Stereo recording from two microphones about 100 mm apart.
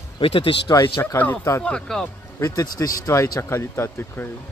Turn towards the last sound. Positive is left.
turn(degrees=25)  # may be behind; listen again after turning